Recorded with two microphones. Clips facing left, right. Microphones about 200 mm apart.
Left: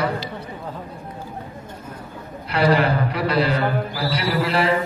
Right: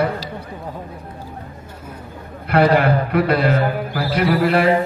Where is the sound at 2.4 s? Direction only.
55° right (ahead or behind).